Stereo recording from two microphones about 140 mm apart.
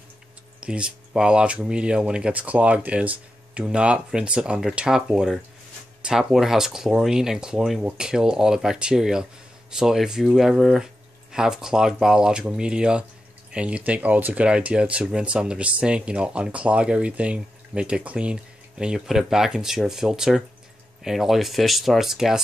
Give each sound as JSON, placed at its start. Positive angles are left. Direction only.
{"t": 0.6, "sound": "speech", "side_deg": -5}